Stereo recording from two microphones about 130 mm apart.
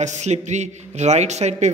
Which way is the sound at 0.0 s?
60° right (ahead or behind).